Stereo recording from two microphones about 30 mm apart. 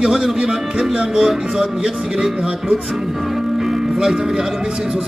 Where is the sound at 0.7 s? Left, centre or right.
Right.